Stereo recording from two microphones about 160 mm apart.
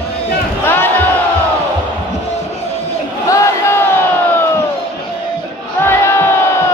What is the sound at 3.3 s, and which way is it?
Crowd, 20° left (ahead or behind).